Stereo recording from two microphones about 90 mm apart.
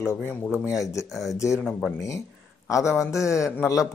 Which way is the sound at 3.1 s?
35° left (ahead or behind).